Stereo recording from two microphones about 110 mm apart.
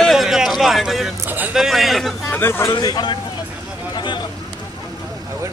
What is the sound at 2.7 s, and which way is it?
Speech, 40° left (ahead or behind).